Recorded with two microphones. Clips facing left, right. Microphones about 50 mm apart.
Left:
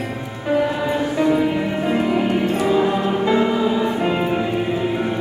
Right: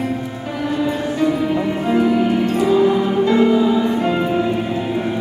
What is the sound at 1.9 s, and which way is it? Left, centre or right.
Music, centre.